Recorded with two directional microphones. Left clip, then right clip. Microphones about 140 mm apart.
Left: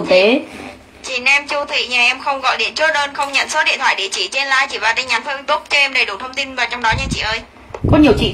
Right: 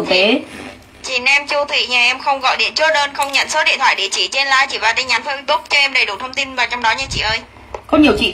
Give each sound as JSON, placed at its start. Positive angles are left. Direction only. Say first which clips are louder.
{"t": 0.0, "sound": "a woman's voice", "louder": "left 2 dB", "side_deg": -15}